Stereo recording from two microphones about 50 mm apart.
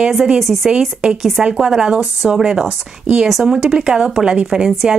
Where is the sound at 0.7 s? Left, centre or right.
Centre.